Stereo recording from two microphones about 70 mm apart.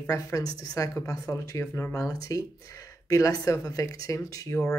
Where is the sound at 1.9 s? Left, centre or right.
Left.